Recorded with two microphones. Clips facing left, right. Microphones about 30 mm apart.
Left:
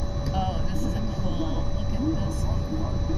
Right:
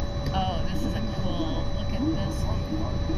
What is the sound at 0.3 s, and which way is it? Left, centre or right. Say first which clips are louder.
Vehicle: right 1 dB; right.